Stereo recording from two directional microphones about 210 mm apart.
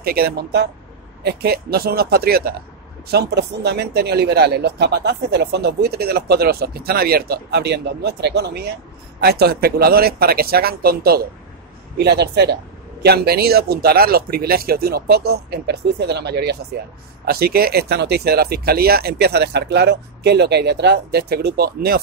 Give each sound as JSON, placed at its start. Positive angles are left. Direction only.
{"t": 0.0, "sound": "speech", "side_deg": -45}